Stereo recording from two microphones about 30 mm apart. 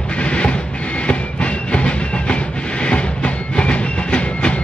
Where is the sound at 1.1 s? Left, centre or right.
Left.